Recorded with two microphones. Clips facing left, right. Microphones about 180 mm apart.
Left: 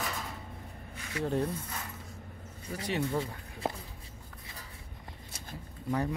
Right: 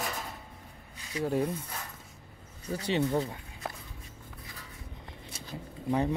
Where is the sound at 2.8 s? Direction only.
25° right (ahead or behind).